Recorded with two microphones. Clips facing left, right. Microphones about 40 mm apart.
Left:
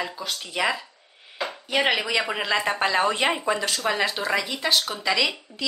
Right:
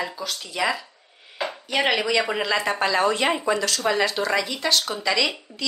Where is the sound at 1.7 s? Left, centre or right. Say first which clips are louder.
Right 1 dB; centre.